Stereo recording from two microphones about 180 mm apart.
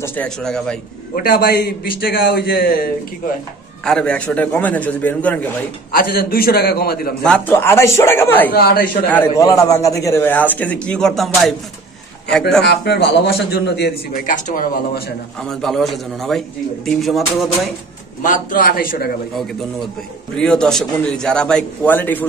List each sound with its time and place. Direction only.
0.0 s a man's voice: 10° left (ahead or behind)
1.1 s a man's voice: 55° left (ahead or behind)
3.8 s a man's voice: 5° left (ahead or behind)
5.9 s a man's voice: 55° left (ahead or behind)
7.2 s a man's voice: 10° left (ahead or behind)
8.5 s a man's voice: 55° left (ahead or behind)
9.1 s a man's voice: 10° left (ahead or behind)
12.6 s a man's voice: 65° left (ahead or behind)
14.2 s speech: 50° left (ahead or behind)
15.4 s a man's voice: centre (ahead or behind)
18.2 s speech: 45° left (ahead or behind)
20.3 s a man's voice: 5° left (ahead or behind)